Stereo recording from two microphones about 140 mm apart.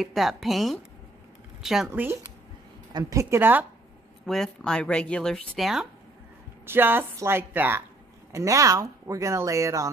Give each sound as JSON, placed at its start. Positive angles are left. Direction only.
{"t": 0.0, "sound": "speech", "side_deg": 0}
{"t": 1.9, "sound": "a woman's voice", "side_deg": -15}
{"t": 4.3, "sound": "speech", "side_deg": 5}
{"t": 6.6, "sound": "a woman's voice", "side_deg": -15}